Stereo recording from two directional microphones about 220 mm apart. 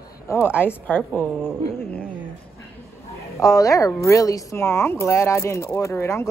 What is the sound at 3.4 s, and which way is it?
Speech, 15° left (ahead or behind).